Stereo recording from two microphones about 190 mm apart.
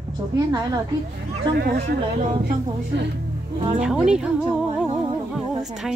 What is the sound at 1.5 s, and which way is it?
Speech, 60° right (ahead or behind).